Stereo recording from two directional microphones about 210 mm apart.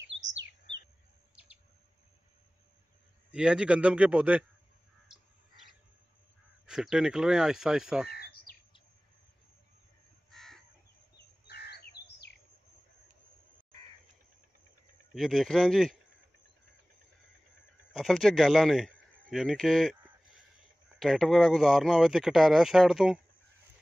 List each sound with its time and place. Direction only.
0.0 s chirp: 60° right (ahead or behind)
3.3 s speech: 5° right (ahead or behind)
5.0 s crow: centre (ahead or behind)
6.6 s speech: 5° right (ahead or behind)
8.1 s bird vocalization: 45° left (ahead or behind)
10.3 s crow: centre (ahead or behind)
11.1 s crow: 50° left (ahead or behind)
15.1 s speech: centre (ahead or behind)
17.9 s speech: centre (ahead or behind)
21.0 s speech: centre (ahead or behind)